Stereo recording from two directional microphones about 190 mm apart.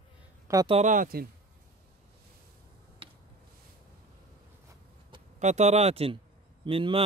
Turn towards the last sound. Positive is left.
turn(degrees=-25)  # may be behind; listen again after turning